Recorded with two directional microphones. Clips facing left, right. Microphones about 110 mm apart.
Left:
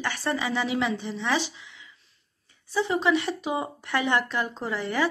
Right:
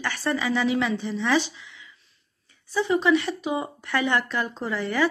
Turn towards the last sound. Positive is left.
turn(degrees=20)  # may be behind; listen again after turning